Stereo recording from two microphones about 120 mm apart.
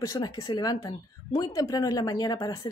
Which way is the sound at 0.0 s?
30° left (ahead or behind).